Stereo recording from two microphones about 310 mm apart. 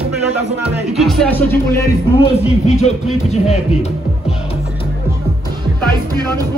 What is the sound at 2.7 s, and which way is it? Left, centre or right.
Speech, left.